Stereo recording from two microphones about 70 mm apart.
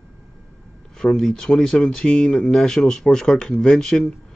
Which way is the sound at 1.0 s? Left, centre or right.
Centre.